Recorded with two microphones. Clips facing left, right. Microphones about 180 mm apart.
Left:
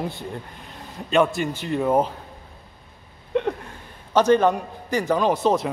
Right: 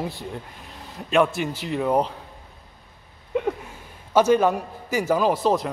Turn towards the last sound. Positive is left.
turn(degrees=0)  # may be behind; listen again after turning